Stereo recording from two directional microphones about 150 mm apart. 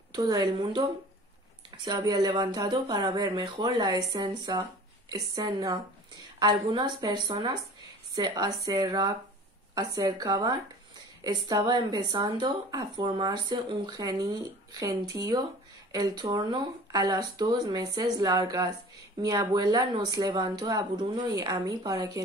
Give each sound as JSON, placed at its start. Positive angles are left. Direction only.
{"t": 0.1, "sound": "speech", "side_deg": -25}